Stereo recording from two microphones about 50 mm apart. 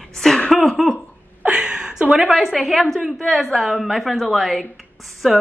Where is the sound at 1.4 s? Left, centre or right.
Centre.